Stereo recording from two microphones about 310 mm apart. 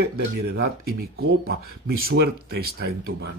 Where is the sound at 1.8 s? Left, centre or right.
Right.